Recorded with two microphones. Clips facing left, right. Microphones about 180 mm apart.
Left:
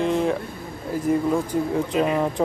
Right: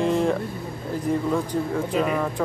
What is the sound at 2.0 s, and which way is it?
Speech, 25° left (ahead or behind).